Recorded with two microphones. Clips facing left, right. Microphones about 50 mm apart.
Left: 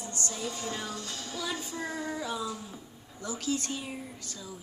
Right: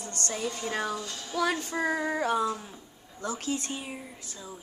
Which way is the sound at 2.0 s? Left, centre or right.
Right.